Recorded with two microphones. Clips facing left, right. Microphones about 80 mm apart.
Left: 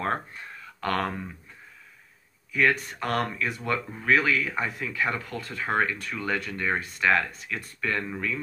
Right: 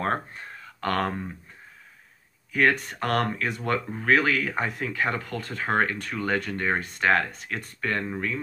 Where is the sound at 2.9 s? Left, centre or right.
Right.